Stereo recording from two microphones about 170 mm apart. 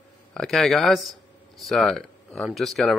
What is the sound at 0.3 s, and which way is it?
Speech, 5° left (ahead or behind).